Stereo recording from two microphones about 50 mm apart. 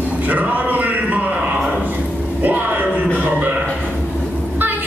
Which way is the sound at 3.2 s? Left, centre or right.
Right.